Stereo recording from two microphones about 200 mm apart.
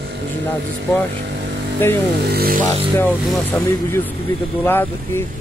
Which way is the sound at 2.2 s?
50° right (ahead or behind).